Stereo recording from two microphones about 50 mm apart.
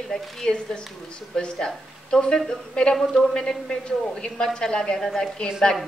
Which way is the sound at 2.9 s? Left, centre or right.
Centre.